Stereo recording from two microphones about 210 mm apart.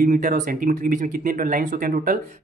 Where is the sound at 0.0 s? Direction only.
35° right (ahead or behind).